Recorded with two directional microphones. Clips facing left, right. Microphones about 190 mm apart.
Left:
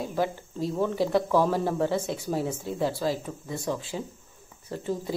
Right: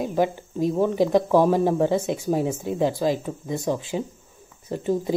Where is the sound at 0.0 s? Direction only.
15° right (ahead or behind).